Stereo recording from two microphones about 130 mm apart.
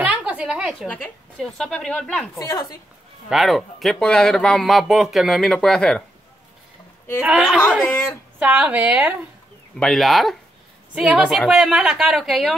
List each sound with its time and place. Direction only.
0.0 s a sound: 10° right (ahead or behind)
0.8 s speech: 10° left (ahead or behind)
2.3 s speech: 25° left (ahead or behind)
3.3 s speech: centre (ahead or behind)
7.2 s a woman's voice: 10° right (ahead or behind)
7.8 s speech: 15° left (ahead or behind)
8.4 s a woman's voice: 10° right (ahead or behind)
9.8 s speech: centre (ahead or behind)